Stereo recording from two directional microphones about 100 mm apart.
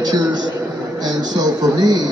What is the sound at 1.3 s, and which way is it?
Speech, 45° right (ahead or behind).